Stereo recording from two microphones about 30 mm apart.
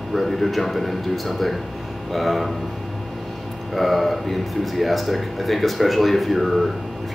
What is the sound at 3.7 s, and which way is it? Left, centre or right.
Speech, centre.